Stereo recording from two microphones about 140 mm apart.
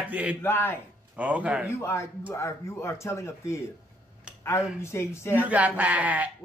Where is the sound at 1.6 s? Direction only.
20° left (ahead or behind).